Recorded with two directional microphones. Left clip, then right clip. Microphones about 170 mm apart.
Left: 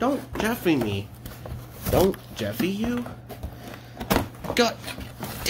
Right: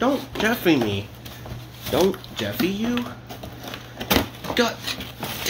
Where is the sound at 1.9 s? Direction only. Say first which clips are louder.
Right 1 dB; 20° left (ahead or behind).